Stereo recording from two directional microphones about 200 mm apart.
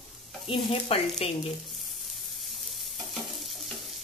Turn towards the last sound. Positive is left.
turn(degrees=0)  # may be behind; listen again after turning